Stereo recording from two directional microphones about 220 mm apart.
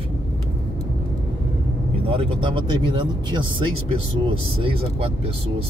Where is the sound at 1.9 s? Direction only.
25° right (ahead or behind).